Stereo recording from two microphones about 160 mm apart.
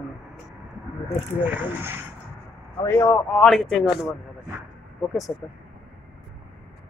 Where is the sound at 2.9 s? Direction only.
15° left (ahead or behind).